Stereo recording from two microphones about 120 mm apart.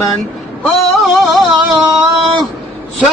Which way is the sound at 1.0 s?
Centre (ahead or behind).